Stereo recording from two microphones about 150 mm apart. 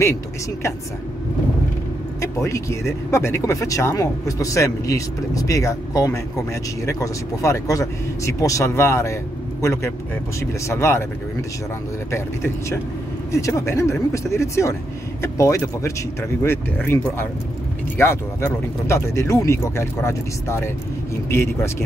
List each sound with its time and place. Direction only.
2.2 s a man's voice: 20° left (ahead or behind)
12.1 s a man's voice: 20° left (ahead or behind)